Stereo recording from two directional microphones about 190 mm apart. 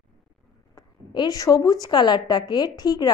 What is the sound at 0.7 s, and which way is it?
A woman's voice, 20° left (ahead or behind).